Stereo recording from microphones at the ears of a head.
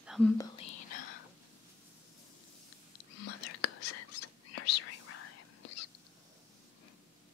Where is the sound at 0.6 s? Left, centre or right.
Left.